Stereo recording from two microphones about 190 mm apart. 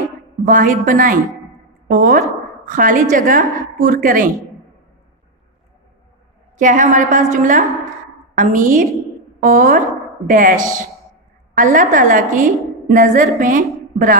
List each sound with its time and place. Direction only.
0.5 s a woman's voice: 45° right (ahead or behind)
6.6 s a woman's voice: 45° right (ahead or behind)